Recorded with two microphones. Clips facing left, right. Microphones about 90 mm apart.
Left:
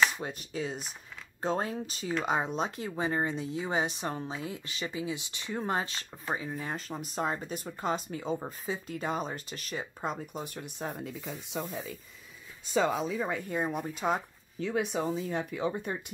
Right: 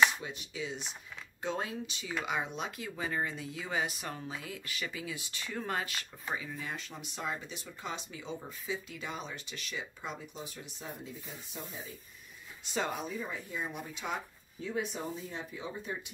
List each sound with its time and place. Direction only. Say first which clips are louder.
0.2 s speech: left 5 dB; 45° left (ahead or behind); by 11.9 s 85° left
13.1 s speech: left 7 dB; 80° left; by 14.2 s 40° left (ahead or behind)
14.6 s speech: left 6 dB; 80° left; by 16.0 s 65° left (ahead or behind)